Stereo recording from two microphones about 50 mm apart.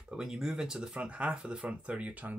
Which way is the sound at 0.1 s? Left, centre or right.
Centre.